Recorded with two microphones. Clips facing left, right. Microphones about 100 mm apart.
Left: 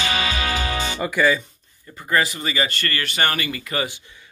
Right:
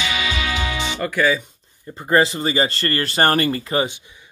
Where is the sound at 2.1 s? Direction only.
30° right (ahead or behind).